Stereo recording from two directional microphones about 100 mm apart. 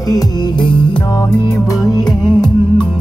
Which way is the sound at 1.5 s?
35° left (ahead or behind).